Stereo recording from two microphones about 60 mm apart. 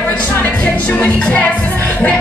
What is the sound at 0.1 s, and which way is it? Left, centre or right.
Music, left.